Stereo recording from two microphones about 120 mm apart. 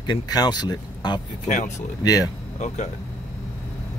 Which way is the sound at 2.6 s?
70° left (ahead or behind).